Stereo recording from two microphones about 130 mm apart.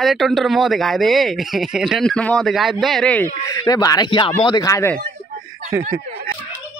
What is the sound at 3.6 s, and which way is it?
Speech, 30° left (ahead or behind).